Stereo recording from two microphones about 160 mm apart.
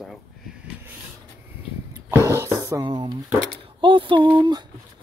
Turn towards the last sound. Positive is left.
turn(degrees=-30)  # may be behind; listen again after turning